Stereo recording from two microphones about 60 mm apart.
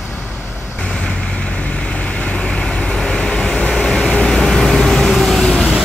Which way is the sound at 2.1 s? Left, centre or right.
Centre.